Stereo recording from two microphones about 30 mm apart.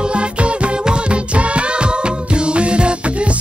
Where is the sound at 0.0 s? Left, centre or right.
Right.